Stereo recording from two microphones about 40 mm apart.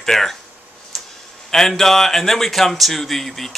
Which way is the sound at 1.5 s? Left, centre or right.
Centre.